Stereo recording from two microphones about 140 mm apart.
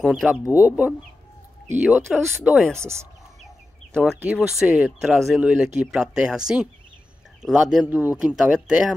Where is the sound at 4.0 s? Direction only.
5° right (ahead or behind).